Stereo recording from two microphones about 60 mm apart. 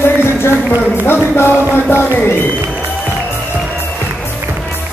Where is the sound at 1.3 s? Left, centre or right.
Left.